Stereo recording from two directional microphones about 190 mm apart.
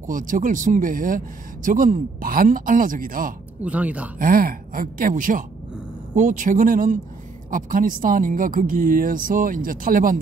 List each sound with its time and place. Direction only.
0.0 s speech: 45° right (ahead or behind)
3.6 s speech: 5° right (ahead or behind)
4.2 s speech: 45° right (ahead or behind)